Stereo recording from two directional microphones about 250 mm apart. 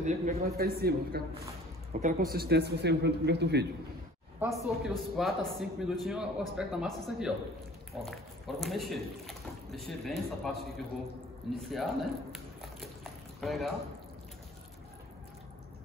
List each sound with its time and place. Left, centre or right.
0.0 s a man's voice: right
4.4 s a man's voice: centre
11.7 s a man's voice: centre
12.8 s a sound: centre